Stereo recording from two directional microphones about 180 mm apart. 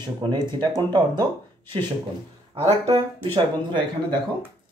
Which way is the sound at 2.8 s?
20° right (ahead or behind).